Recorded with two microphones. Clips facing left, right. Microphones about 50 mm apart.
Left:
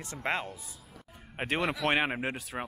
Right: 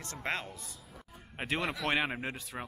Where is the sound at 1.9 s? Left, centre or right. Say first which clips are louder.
Left 1 dB; centre.